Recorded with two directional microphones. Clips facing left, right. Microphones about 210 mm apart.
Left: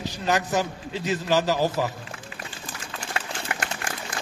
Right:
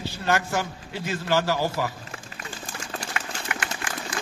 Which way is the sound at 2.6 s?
45° right (ahead or behind).